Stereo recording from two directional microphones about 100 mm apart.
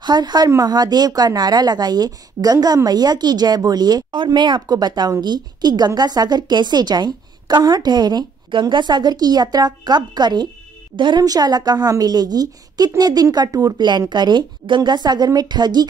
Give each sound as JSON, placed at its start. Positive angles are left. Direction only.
{"t": 0.0, "sound": "a woman's voice", "side_deg": -45}